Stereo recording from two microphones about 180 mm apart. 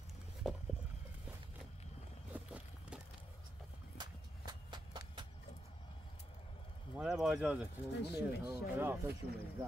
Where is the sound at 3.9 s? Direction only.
25° right (ahead or behind).